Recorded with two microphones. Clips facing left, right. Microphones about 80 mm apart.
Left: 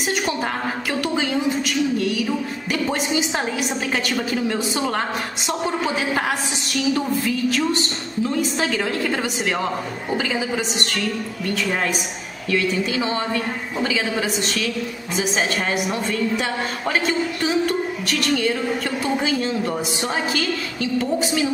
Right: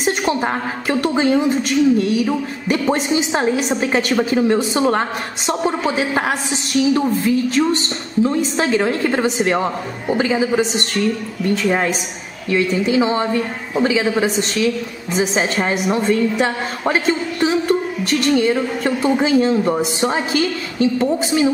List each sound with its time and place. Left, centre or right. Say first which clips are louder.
0.0 s a woman's voice: right 5 dB; right